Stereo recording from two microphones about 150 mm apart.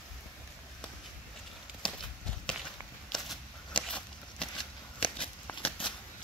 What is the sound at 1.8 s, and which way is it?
Clip-clop, 5° left (ahead or behind).